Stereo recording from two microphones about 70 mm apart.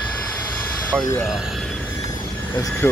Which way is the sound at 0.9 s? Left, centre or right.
Right.